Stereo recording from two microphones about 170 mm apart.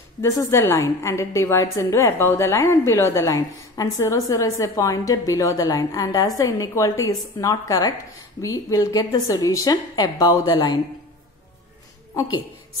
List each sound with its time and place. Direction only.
0.2 s a woman's voice: 15° left (ahead or behind)